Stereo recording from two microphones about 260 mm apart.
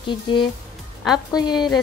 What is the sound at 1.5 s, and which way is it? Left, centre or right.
Speech, centre.